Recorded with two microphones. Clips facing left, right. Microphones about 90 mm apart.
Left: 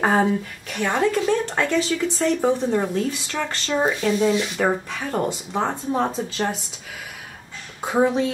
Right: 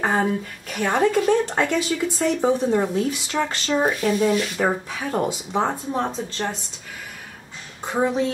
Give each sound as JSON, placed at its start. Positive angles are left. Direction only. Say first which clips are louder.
{"t": 0.0, "sound": "speech", "louder": "left 2 dB", "side_deg": 5}
{"t": 0.7, "sound": "speech", "louder": "right 1 dB", "side_deg": -5}
{"t": 0.9, "sound": "speech", "louder": "right 2 dB", "side_deg": -15}
{"t": 4.2, "sound": "speech", "louder": "even", "side_deg": 20}
{"t": 4.6, "sound": "speech", "louder": "left 1 dB", "side_deg": -5}
{"t": 5.3, "sound": "speech", "louder": "right 1 dB", "side_deg": -15}
{"t": 5.9, "sound": "speech", "louder": "left 2 dB", "side_deg": 0}
{"t": 7.8, "sound": "speech", "louder": "left 2 dB", "side_deg": 5}